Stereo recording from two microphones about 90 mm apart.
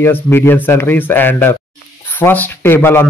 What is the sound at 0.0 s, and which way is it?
Speech, 25° left (ahead or behind).